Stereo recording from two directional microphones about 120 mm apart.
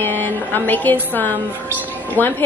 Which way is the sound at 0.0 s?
15° left (ahead or behind).